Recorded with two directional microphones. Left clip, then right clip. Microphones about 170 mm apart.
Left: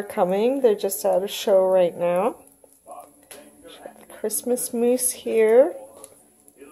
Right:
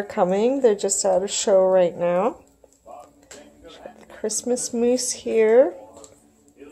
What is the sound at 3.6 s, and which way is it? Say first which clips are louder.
Speech: even; centre (ahead or behind).